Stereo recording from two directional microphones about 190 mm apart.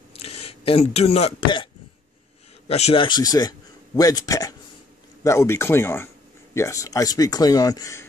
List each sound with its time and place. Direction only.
0.1 s speech: 30° left (ahead or behind)
2.7 s a man's voice: 30° left (ahead or behind)